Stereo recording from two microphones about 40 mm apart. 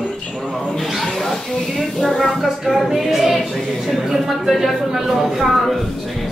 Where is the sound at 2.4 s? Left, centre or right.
Centre.